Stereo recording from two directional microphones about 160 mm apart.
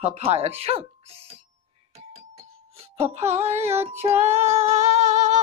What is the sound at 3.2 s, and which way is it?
Child singing, 15° right (ahead or behind).